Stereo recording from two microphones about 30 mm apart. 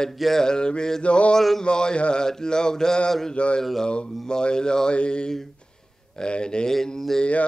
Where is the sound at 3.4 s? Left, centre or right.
Left.